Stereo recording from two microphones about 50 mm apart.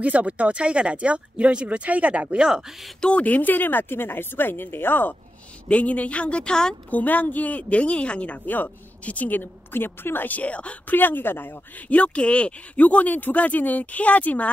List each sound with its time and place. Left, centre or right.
0.0 s speech: right
2.3 s speech: centre
3.0 s speech: left
5.7 s a woman's voice: left
6.9 s speech: left
8.5 s speech: left
11.0 s speech: left
11.9 s speech: left